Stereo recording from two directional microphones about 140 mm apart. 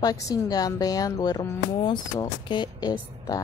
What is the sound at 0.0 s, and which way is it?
A woman's voice, 25° left (ahead or behind).